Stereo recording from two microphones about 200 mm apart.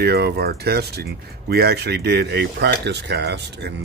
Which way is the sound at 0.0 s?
55° right (ahead or behind).